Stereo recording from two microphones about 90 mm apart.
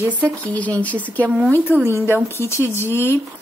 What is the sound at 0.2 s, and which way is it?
Speech, 15° left (ahead or behind).